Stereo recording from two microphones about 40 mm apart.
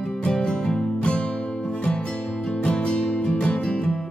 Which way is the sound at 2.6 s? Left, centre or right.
Left.